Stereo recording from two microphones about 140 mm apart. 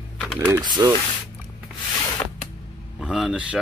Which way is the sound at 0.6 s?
30° right (ahead or behind).